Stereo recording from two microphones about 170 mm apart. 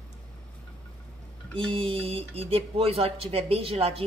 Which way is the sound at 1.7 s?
30° right (ahead or behind).